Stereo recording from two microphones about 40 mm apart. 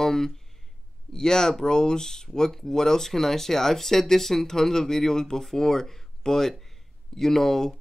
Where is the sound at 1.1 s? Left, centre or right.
Centre.